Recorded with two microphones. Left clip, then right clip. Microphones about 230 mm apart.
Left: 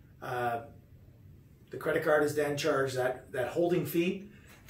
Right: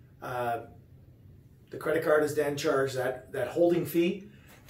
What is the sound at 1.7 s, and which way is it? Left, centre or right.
Speech, centre.